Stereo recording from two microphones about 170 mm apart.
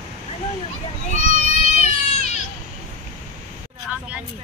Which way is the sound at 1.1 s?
40° left (ahead or behind).